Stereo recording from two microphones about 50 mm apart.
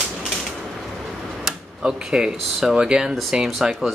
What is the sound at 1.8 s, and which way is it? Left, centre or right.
Speech, centre.